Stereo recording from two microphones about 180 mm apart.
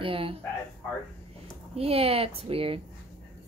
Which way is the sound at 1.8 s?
35° right (ahead or behind).